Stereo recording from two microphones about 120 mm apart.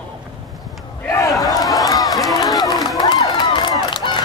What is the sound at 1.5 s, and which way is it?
Run, 30° left (ahead or behind).